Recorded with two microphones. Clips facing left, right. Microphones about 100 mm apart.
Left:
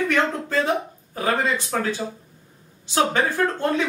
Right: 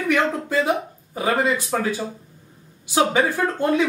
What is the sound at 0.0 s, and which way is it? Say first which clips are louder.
Speech: right 1 dB; 10° right (ahead or behind).